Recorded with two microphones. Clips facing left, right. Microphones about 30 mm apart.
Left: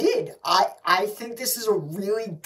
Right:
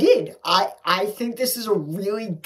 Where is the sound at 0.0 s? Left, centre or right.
Right.